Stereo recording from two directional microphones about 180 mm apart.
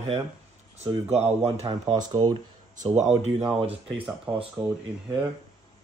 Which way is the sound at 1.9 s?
20° right (ahead or behind).